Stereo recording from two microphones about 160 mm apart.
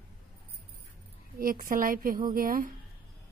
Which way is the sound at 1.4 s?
60° right (ahead or behind).